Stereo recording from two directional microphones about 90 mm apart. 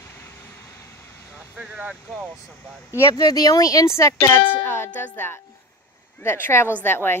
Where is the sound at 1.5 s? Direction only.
10° right (ahead or behind).